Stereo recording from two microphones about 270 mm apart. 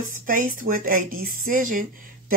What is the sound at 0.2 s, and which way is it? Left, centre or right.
Speech, right.